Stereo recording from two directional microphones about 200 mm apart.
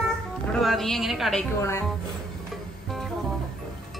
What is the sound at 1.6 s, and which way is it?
Speech, 15° left (ahead or behind).